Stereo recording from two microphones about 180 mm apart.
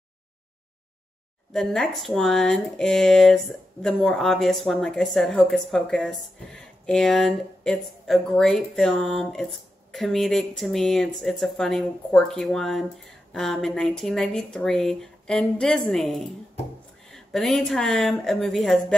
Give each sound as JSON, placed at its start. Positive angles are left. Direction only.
{"t": 1.5, "sound": "a woman's voice", "side_deg": 5}